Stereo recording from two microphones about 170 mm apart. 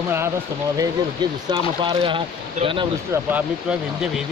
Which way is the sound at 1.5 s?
30° right (ahead or behind).